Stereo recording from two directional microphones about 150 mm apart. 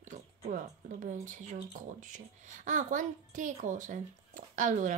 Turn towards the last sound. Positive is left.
turn(degrees=-55)  # may be behind; listen again after turning